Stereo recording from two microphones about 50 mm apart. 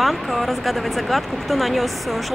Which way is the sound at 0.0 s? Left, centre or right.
Centre.